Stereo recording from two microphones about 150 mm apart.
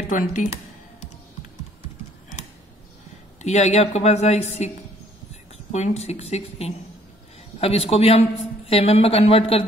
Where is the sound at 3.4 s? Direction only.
50° left (ahead or behind).